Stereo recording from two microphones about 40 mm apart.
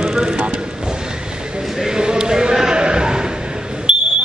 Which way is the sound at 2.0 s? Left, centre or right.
Centre.